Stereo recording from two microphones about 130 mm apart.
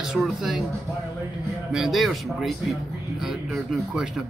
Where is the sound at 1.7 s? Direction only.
Centre (ahead or behind).